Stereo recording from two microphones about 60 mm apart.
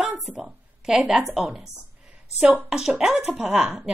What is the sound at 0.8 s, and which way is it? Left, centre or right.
Speech, centre.